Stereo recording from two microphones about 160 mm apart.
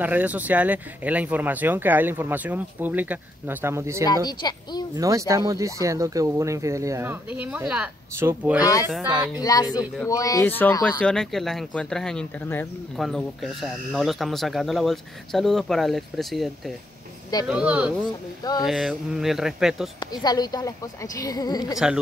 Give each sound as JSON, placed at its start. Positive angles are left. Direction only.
{"t": 0.0, "sound": "speech", "side_deg": -10}
{"t": 4.3, "sound": "a woman's voice", "side_deg": 25}
{"t": 4.9, "sound": "speech", "side_deg": -20}
{"t": 9.4, "sound": "a woman's voice", "side_deg": 25}
{"t": 12.9, "sound": "speech", "side_deg": 0}
{"t": 20.0, "sound": "a woman's voice", "side_deg": 25}
{"t": 21.7, "sound": "speech", "side_deg": -5}